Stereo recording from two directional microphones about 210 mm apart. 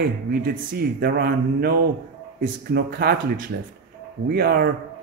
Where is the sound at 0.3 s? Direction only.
45° right (ahead or behind).